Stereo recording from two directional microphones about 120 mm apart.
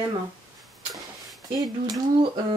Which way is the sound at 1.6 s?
35° right (ahead or behind).